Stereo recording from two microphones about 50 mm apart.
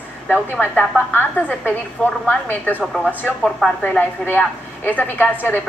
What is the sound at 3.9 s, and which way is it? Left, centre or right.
A woman's voice, left.